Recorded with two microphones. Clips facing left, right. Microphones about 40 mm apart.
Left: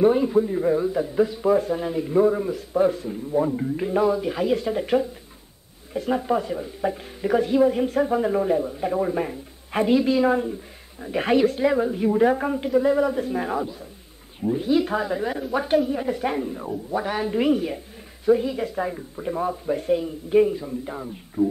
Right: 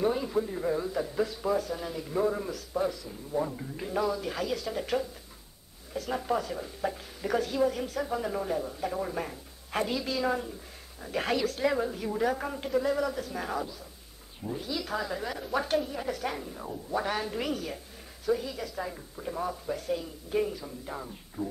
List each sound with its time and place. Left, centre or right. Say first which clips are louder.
0.0 s a man's voice: left 10 dB; left
2.2 s a man's voice: left 8 dB; centre
2.5 s speech: left 10 dB; left
6.1 s speech: left 6 dB; centre
11.6 s speech: left 8 dB; centre
14.7 s speech: left 11 dB; left
20.6 s a man's voice: left 8 dB; centre